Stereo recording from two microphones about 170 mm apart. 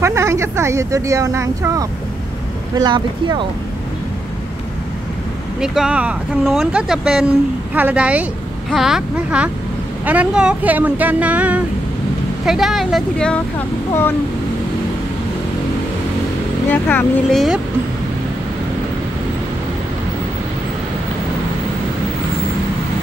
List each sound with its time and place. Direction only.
0.0 s speech: 15° right (ahead or behind)
5.6 s speech: 5° right (ahead or behind)
16.7 s speech: 10° left (ahead or behind)